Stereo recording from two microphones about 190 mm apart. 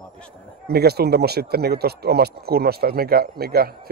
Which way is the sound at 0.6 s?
55° right (ahead or behind).